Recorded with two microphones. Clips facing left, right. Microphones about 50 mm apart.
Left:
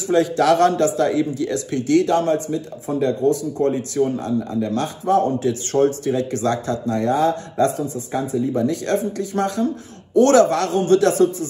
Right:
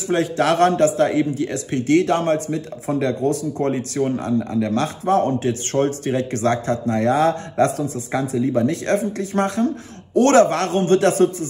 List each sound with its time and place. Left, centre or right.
0.1 s speech: right